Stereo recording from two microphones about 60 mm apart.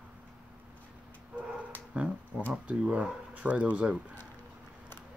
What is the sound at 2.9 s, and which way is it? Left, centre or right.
Speech, right.